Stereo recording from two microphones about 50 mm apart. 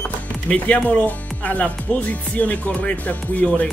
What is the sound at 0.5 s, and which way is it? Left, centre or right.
Speech, left.